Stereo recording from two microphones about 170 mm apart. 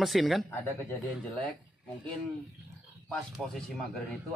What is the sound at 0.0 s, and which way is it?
Speech, centre (ahead or behind).